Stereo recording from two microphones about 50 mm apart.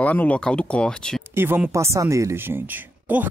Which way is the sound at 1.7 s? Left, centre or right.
Right.